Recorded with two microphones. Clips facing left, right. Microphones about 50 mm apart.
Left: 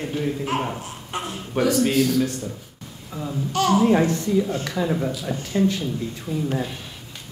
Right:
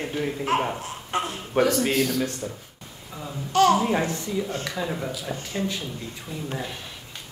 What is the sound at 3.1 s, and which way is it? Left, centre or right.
Speech, centre.